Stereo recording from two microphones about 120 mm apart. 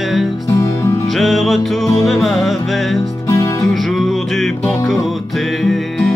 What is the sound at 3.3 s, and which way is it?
Music, 30° left (ahead or behind).